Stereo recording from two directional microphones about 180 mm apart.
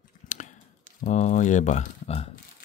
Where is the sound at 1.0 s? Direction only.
45° left (ahead or behind).